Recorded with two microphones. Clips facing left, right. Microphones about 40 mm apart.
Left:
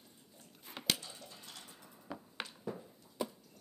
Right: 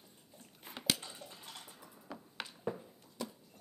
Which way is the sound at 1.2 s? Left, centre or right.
Right.